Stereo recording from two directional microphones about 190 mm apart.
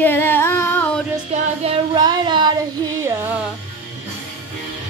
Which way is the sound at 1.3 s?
35° right (ahead or behind).